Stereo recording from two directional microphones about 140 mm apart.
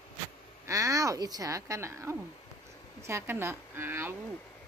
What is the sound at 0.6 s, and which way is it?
Speech, 25° right (ahead or behind).